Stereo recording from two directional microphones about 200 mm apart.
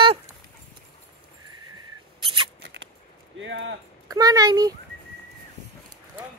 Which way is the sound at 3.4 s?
65° right (ahead or behind).